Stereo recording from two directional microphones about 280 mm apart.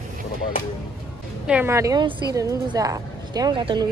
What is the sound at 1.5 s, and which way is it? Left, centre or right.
A woman's voice, centre.